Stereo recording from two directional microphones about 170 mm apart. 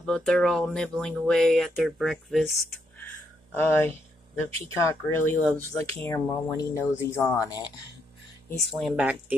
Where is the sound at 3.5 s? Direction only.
15° left (ahead or behind).